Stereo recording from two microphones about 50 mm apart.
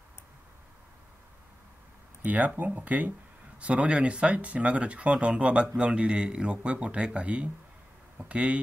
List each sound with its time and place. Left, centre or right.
2.2 s speech: right